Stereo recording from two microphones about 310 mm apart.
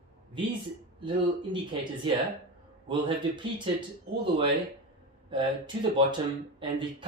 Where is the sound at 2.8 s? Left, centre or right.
Centre.